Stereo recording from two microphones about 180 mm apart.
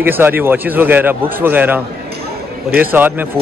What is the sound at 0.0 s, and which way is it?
Speech, 10° right (ahead or behind).